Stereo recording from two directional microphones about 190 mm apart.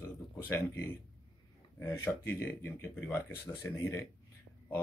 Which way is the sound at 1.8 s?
10° left (ahead or behind).